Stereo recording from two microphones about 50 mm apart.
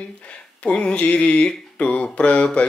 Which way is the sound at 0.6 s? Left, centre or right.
Left.